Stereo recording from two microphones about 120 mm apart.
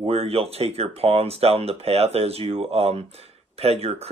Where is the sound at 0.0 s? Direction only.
55° right (ahead or behind).